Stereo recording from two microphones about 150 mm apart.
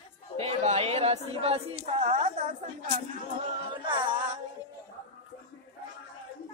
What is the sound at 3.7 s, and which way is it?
Music, 35° right (ahead or behind).